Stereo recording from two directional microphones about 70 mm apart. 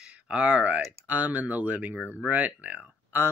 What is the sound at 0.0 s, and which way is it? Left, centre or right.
Speech, centre.